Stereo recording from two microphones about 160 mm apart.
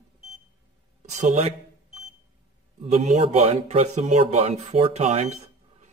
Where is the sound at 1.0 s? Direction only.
50° right (ahead or behind).